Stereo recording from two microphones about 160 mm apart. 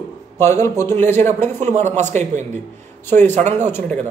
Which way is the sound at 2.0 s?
45° right (ahead or behind).